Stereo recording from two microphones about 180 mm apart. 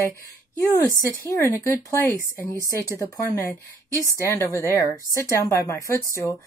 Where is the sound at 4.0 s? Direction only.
15° left (ahead or behind).